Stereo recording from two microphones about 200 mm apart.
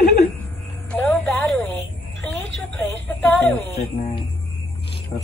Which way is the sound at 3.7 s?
30° left (ahead or behind).